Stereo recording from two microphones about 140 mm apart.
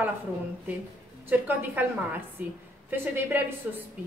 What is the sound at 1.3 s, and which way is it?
A woman's voice, 15° right (ahead or behind).